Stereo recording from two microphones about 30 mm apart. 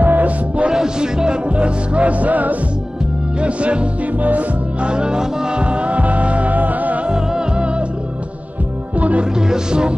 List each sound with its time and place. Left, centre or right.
0.0 s music: right
0.7 s music: right
1.5 s music: right
3.3 s music: right
4.0 s music: right
4.8 s music: right
5.6 s music: right
7.1 s music: right
8.9 s music: right
9.2 s music: right